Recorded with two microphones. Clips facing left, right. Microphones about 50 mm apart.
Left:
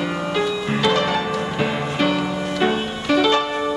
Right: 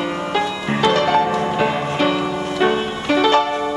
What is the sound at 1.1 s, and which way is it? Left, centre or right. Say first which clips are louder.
Music: right 5 dB; right.